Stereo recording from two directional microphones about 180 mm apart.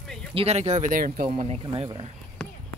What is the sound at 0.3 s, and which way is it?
Speech, 35° right (ahead or behind).